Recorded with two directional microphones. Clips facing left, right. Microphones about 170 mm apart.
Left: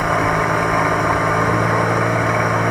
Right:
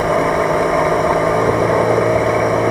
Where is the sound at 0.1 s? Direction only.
30° right (ahead or behind).